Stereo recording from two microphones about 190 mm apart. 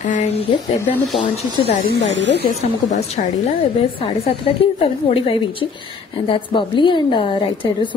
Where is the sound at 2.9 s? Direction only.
40° left (ahead or behind).